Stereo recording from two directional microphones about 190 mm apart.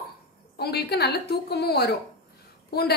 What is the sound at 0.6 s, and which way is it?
A woman's voice, 55° left (ahead or behind).